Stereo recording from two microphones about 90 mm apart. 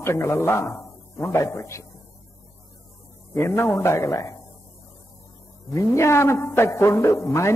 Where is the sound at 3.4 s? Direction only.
30° left (ahead or behind).